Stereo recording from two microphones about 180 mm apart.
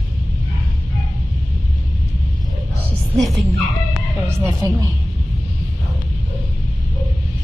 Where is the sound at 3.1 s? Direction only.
Centre (ahead or behind).